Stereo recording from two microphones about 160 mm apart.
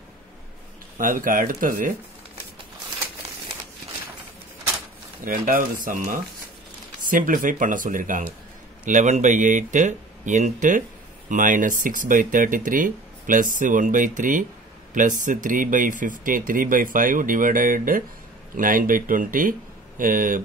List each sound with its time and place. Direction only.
0.9 s speech: 55° right (ahead or behind)
5.2 s speech: 60° right (ahead or behind)